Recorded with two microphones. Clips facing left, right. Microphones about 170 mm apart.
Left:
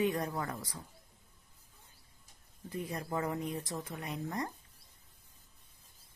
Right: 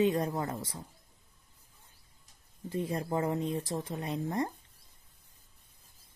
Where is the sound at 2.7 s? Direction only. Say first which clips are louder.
Right 5 dB; 25° right (ahead or behind).